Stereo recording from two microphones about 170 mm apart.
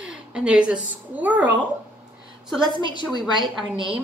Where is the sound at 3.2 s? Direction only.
Centre (ahead or behind).